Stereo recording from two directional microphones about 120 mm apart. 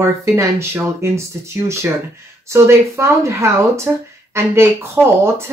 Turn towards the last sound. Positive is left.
turn(degrees=-20)  # may be behind; listen again after turning